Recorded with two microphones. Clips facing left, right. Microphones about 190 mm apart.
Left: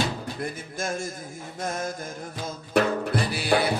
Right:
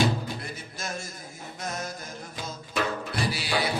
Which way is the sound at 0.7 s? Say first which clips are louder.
Left 7 dB; 50° left (ahead or behind).